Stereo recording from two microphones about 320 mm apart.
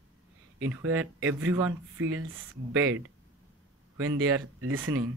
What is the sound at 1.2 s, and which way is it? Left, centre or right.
Speech, right.